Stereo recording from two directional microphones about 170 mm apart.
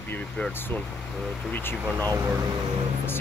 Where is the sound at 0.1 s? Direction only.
10° left (ahead or behind).